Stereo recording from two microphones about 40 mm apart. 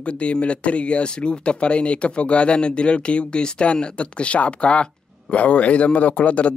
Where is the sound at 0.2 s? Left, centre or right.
Left.